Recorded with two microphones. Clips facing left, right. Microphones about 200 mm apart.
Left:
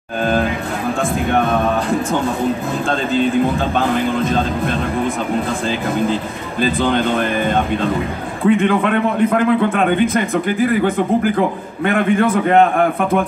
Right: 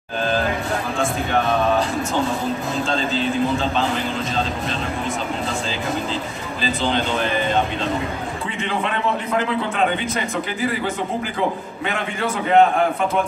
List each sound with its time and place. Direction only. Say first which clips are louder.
1.3 s a man's voice: left 2 dB; 55° left (ahead or behind)
6.6 s a man's voice: left 6 dB; 55° left (ahead or behind)